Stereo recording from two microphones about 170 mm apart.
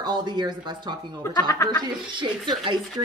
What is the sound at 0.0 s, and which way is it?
Speech, 25° right (ahead or behind).